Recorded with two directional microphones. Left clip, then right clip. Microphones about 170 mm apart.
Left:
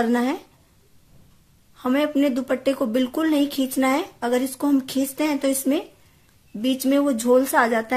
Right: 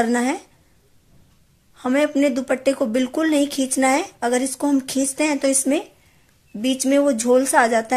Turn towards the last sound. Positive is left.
turn(degrees=-15)  # may be behind; listen again after turning